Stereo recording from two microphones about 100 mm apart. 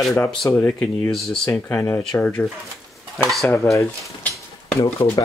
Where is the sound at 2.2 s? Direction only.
10° left (ahead or behind).